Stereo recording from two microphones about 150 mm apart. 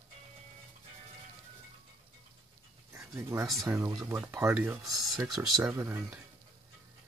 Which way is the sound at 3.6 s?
15° right (ahead or behind).